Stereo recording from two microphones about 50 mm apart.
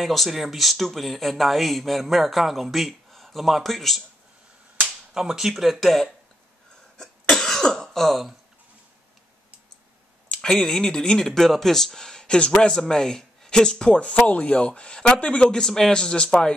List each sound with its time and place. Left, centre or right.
0.0 s speech: centre
5.1 s speech: centre
7.0 s cough: centre
10.3 s speech: centre
14.0 s speech: left